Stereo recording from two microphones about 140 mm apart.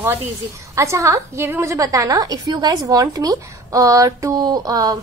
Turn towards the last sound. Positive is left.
turn(degrees=-25)  # may be behind; listen again after turning